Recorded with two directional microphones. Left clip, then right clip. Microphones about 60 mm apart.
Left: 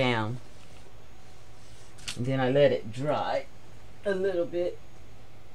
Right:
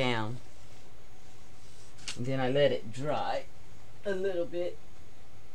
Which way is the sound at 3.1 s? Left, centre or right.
Right.